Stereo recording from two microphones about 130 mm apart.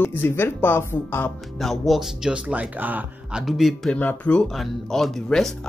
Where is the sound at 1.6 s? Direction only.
Centre (ahead or behind).